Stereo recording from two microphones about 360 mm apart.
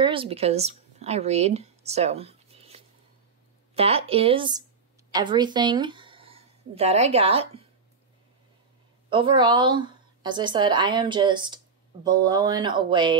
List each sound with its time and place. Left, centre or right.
0.0 s a woman's voice: centre
9.1 s a woman's voice: centre